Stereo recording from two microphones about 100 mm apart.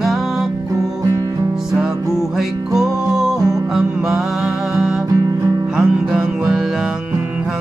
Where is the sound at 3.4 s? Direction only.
35° right (ahead or behind).